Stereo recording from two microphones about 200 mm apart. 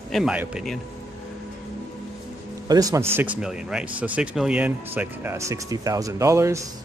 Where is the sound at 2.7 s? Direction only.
20° right (ahead or behind).